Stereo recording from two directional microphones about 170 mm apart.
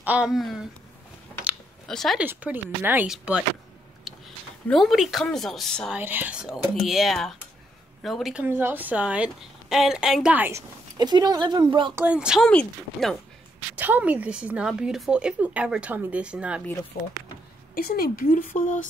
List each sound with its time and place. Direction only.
0.0 s a woman's voice: 5° right (ahead or behind)
1.4 s typing: centre (ahead or behind)
2.2 s a woman's voice: 10° right (ahead or behind)
4.6 s a woman's voice: centre (ahead or behind)
5.9 s a woman's voice: 10° right (ahead or behind)
11.0 s speech: 25° right (ahead or behind)
11.9 s a woman's voice: 10° right (ahead or behind)
13.7 s a woman's voice: 10° right (ahead or behind)
17.7 s speech: 60° left (ahead or behind)